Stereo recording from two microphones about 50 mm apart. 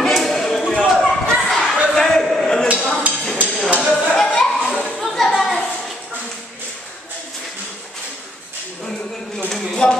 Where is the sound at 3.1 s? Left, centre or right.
Right.